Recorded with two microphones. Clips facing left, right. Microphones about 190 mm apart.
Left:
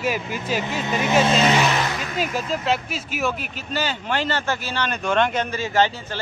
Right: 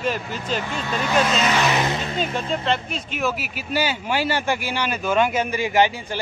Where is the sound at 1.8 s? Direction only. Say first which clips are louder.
Right 2 dB; 25° right (ahead or behind).